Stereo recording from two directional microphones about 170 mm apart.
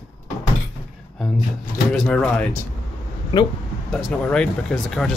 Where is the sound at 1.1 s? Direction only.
Centre (ahead or behind).